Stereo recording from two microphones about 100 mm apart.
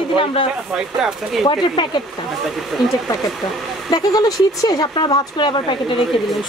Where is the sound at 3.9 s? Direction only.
40° left (ahead or behind).